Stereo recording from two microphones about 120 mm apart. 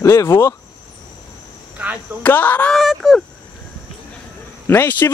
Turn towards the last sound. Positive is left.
turn(degrees=15)  # may be behind; listen again after turning